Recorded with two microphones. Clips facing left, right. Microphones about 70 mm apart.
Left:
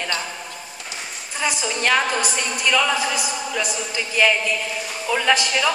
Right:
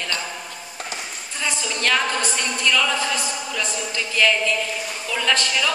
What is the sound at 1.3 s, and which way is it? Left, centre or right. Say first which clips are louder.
A woman's voice: left 3 dB; centre.